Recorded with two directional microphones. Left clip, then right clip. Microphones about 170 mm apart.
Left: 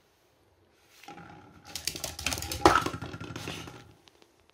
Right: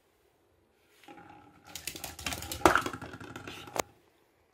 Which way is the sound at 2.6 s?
40° right (ahead or behind).